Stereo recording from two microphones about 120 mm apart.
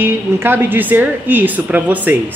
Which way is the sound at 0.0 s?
20° right (ahead or behind).